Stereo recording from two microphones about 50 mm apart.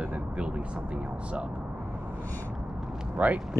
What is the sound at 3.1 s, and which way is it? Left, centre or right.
Speech, right.